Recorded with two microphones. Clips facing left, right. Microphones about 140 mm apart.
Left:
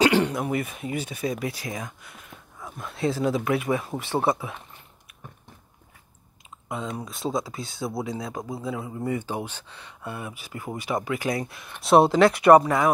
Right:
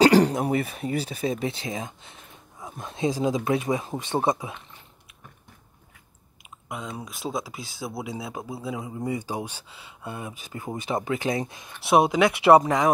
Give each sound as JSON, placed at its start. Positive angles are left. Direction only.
{"t": 0.0, "sound": "speech", "side_deg": -35}
{"t": 6.7, "sound": "speech", "side_deg": -5}
{"t": 8.6, "sound": "speech", "side_deg": -15}
{"t": 10.0, "sound": "speech", "side_deg": -20}